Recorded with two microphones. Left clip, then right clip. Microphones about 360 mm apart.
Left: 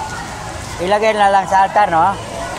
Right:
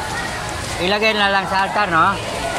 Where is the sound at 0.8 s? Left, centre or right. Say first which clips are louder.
Left 4 dB; centre.